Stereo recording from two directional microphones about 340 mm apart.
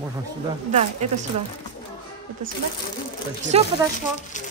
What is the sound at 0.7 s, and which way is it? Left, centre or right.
Speech, right.